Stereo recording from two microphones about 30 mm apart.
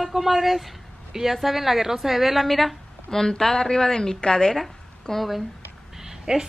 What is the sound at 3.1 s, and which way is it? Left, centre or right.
Speech, centre.